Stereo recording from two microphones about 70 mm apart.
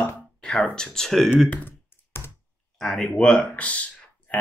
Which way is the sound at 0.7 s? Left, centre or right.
Centre.